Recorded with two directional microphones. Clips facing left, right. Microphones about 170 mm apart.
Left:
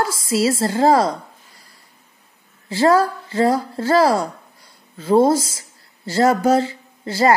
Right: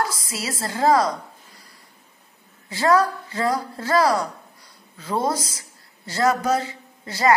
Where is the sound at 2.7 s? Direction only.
30° left (ahead or behind).